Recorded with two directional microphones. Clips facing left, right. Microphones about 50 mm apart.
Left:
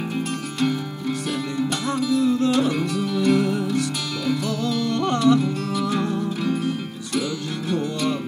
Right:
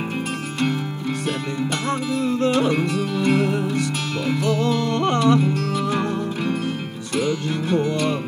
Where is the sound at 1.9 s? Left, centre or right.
Right.